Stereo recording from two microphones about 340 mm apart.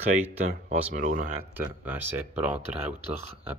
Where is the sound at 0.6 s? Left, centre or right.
Right.